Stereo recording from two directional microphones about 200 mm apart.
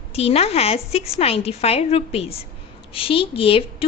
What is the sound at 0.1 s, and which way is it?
A woman's voice, 30° left (ahead or behind).